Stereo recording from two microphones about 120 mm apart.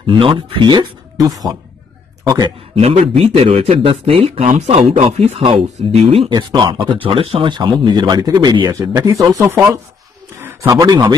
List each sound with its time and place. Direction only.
0.0 s a man's voice: 45° right (ahead or behind)
2.7 s speech: 55° right (ahead or behind)
6.0 s speech: 50° right (ahead or behind)
6.3 s speech: 35° right (ahead or behind)